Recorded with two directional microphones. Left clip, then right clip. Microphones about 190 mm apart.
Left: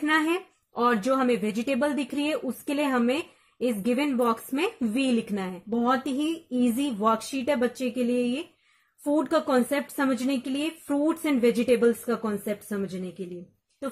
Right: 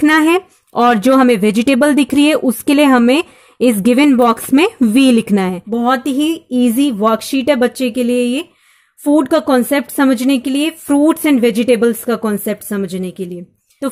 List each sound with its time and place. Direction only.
0.0 s speech: 50° right (ahead or behind)